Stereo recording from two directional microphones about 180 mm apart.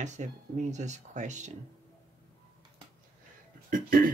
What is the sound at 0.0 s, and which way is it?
Speech, 40° right (ahead or behind).